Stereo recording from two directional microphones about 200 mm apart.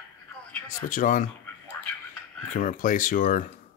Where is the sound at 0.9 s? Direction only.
40° left (ahead or behind).